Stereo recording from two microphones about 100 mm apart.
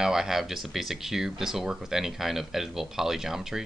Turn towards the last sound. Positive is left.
turn(degrees=-5)  # may be behind; listen again after turning